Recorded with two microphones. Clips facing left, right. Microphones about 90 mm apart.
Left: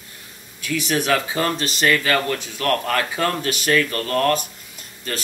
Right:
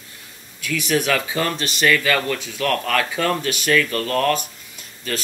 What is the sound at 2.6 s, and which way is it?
Speech, 25° left (ahead or behind).